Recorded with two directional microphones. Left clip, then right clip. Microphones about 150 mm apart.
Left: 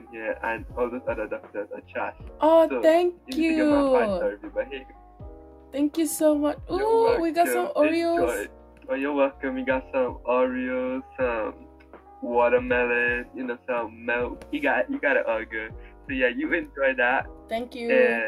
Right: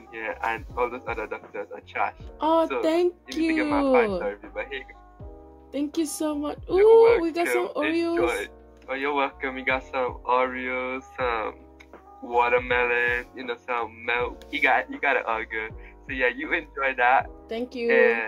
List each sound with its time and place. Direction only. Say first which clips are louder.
0.1 s speech: even; 50° right (ahead or behind)
2.5 s speech: left 4 dB; 65° right (ahead or behind)
5.7 s speech: left 2 dB; 65° right (ahead or behind)
8.8 s speech: left 2 dB; 55° right (ahead or behind)